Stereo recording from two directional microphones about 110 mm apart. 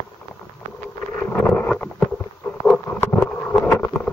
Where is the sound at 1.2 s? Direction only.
10° left (ahead or behind).